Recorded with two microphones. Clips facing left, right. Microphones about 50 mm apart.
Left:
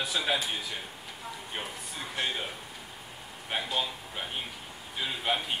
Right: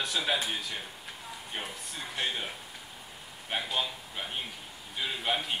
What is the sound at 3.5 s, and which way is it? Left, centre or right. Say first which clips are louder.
A man's voice: left 1 dB; centre.